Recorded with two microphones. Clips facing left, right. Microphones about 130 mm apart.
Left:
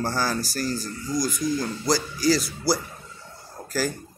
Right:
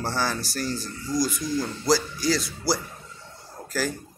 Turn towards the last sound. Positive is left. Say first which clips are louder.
# left 2 dB
turn(degrees=0)  # may be behind; listen again after turning